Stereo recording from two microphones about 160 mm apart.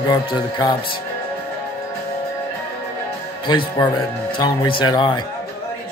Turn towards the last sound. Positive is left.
turn(degrees=30)  # may be behind; listen again after turning